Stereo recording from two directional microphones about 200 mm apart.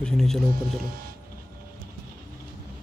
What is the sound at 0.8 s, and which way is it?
Music, 50° right (ahead or behind).